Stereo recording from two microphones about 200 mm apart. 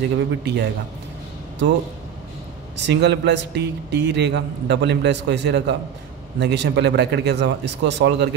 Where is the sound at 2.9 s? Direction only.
60° right (ahead or behind).